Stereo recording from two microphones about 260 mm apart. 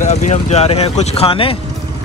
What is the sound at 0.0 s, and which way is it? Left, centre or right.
Speech, left.